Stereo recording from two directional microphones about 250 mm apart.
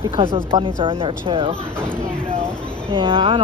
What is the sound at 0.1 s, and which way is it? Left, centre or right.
Speech, centre.